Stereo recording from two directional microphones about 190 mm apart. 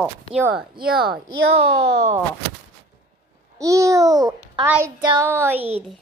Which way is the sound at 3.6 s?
15° right (ahead or behind).